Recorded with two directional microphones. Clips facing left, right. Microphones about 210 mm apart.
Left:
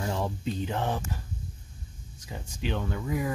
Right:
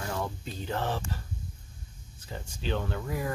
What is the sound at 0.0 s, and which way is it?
Speech, 20° left (ahead or behind).